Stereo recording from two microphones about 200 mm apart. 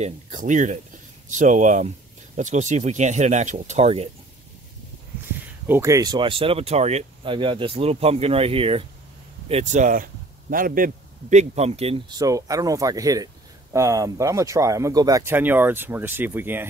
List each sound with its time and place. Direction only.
0.0 s speech: 40° right (ahead or behind)
5.2 s speech: 15° right (ahead or behind); by 12.2 s 30° right (ahead or behind)
12.2 s speech: 15° right (ahead or behind)